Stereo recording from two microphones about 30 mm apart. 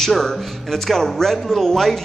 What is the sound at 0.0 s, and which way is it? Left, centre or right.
Speech, centre.